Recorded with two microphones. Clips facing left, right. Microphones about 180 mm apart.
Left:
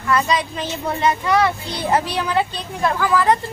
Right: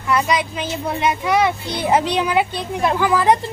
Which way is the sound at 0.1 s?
15° right (ahead or behind).